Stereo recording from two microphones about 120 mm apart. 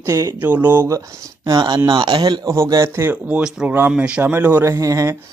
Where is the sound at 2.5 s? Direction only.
25° right (ahead or behind).